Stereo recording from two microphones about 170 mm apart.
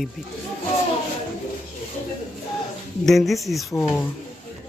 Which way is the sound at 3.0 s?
Centre (ahead or behind).